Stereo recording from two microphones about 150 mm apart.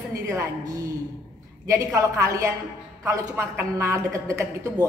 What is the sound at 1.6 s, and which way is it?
A man's voice, 20° right (ahead or behind).